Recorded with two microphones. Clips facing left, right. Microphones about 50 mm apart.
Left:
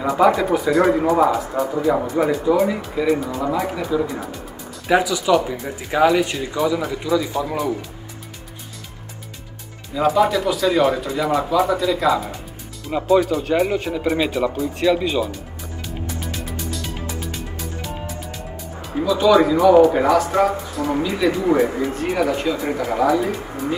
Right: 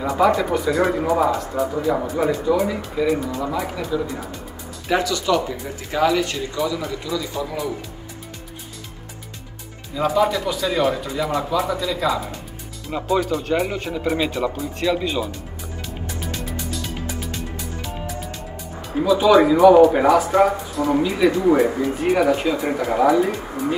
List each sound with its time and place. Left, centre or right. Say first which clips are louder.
0.1 s speech: left 2 dB; centre
9.9 s speech: left 2 dB; centre
16.2 s music: even; centre
19.0 s speech: right 1 dB; centre